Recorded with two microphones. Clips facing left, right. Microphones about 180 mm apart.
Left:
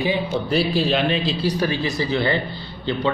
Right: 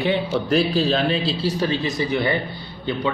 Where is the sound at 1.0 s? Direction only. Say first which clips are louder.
Even; 35° right (ahead or behind).